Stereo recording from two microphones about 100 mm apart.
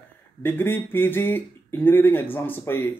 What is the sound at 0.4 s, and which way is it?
A man's voice, 20° left (ahead or behind).